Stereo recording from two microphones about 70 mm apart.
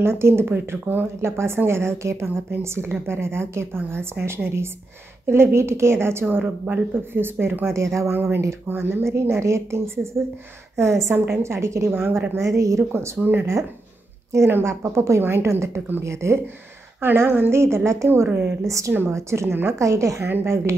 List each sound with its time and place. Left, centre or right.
0.0 s speech: right
6.2 s speech: right
8.1 s a woman's voice: right
11.9 s speech: right
12.4 s a woman's voice: right
13.2 s speech: right
14.3 s speech: right
17.0 s a woman's voice: right
19.8 s a woman's voice: right